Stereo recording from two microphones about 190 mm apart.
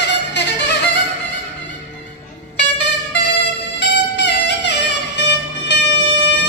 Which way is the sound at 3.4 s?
65° left (ahead or behind).